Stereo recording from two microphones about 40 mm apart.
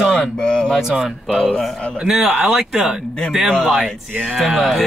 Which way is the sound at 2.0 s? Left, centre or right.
Centre.